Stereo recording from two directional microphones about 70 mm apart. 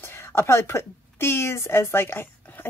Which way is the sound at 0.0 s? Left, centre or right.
Left.